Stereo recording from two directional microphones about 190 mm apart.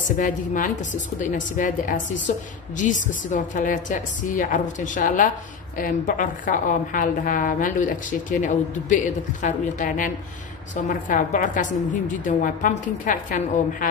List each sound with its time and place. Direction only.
1.2 s a woman's voice: 45° left (ahead or behind)